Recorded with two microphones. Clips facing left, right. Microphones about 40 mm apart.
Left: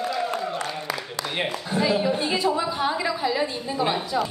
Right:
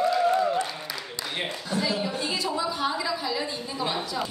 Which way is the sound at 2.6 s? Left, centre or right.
Left.